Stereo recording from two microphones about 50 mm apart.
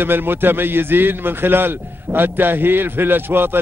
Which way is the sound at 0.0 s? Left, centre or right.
Right.